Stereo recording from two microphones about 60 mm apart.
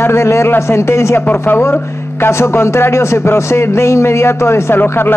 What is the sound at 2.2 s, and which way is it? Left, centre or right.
Speech, left.